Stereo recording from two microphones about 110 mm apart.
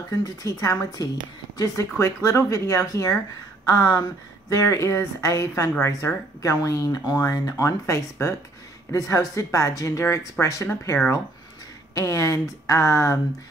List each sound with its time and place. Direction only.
0.2 s a woman's voice: 30° left (ahead or behind)